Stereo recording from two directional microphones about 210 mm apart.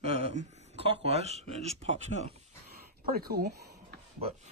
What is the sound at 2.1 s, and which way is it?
Speech, 60° left (ahead or behind).